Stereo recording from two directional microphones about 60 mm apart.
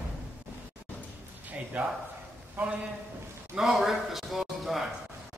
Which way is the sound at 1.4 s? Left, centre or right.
Right.